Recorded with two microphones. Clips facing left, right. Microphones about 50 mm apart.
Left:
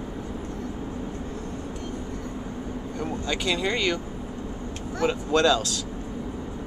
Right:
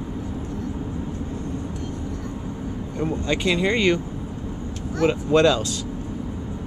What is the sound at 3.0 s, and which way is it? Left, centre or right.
Speech, right.